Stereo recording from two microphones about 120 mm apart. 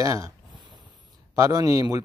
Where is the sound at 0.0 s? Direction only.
25° right (ahead or behind).